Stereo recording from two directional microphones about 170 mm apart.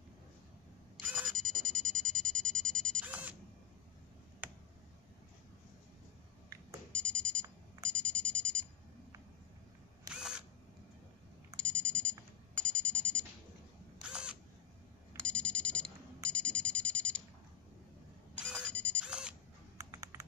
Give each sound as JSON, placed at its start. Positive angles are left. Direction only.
{"t": 0.9, "sound": "smoke detector", "side_deg": 0}
{"t": 3.1, "sound": "camera", "side_deg": -10}
{"t": 6.9, "sound": "alarm", "side_deg": 5}
{"t": 7.9, "sound": "a sound", "side_deg": 5}
{"t": 10.1, "sound": "camera", "side_deg": -5}
{"t": 11.6, "sound": "alarm", "side_deg": 5}
{"t": 12.6, "sound": "a sound", "side_deg": 5}
{"t": 14.0, "sound": "camera", "side_deg": -5}
{"t": 15.2, "sound": "alarm", "side_deg": 5}
{"t": 16.3, "sound": "a sound", "side_deg": 5}
{"t": 18.3, "sound": "a sound", "side_deg": -5}
{"t": 18.7, "sound": "music", "side_deg": 10}
{"t": 19.0, "sound": "camera", "side_deg": -5}
{"t": 19.8, "sound": "computer keyboard", "side_deg": -20}